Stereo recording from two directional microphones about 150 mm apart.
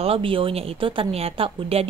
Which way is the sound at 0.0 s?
40° right (ahead or behind).